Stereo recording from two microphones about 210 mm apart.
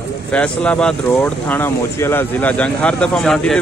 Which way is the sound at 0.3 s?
5° left (ahead or behind).